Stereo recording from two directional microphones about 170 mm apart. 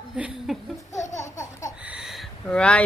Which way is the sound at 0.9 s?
45° left (ahead or behind).